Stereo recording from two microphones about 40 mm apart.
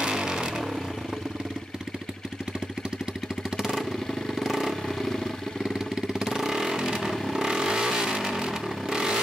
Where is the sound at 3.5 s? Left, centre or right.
Centre.